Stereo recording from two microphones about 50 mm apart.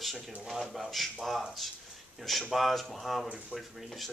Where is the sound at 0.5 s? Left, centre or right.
Centre.